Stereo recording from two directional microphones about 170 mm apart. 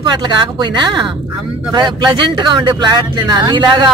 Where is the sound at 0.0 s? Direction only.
25° right (ahead or behind).